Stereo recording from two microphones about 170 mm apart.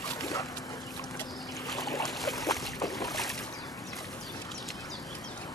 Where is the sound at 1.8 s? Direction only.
Centre (ahead or behind).